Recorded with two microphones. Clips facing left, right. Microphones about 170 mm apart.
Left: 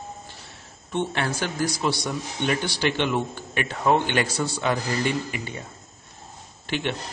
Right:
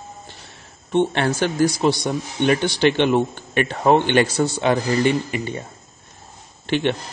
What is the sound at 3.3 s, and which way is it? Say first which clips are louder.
Speech: right 7 dB; 60° right (ahead or behind).